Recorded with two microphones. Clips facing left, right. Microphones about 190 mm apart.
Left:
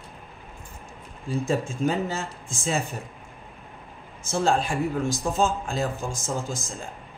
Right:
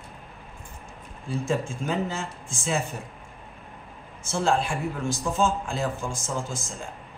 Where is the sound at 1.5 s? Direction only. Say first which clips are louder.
Left 3 dB; 40° left (ahead or behind).